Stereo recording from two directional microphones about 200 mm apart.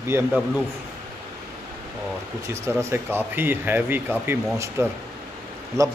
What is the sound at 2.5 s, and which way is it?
Speech, 15° right (ahead or behind).